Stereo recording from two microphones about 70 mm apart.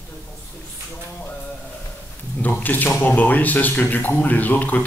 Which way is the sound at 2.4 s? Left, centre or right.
Left.